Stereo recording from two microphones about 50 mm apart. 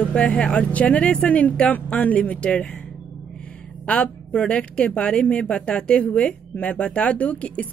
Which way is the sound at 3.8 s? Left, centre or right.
Left.